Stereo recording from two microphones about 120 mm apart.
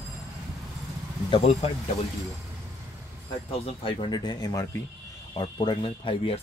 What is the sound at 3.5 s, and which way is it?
Speech, 50° left (ahead or behind).